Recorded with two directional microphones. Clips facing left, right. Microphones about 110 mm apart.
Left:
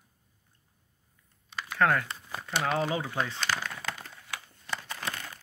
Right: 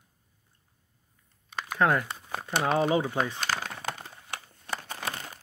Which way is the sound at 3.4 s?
40° right (ahead or behind).